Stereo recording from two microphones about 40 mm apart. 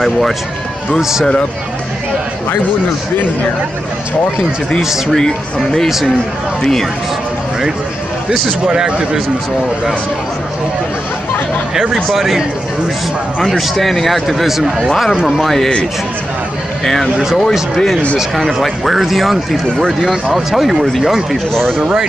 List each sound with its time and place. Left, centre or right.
4.8 s speech: centre
5.1 s speech: centre
5.9 s speech: centre
6.6 s speech: centre
8.6 s a man's voice: right
11.7 s speech: centre
13.4 s speech: centre
16.8 s speech: centre
18.1 s speech: centre